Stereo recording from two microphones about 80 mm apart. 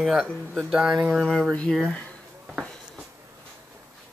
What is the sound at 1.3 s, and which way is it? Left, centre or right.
Speech, centre.